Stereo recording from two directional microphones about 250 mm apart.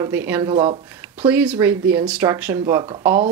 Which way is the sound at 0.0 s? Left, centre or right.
Centre.